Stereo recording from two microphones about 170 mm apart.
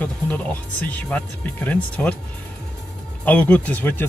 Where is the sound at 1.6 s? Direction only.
10° left (ahead or behind).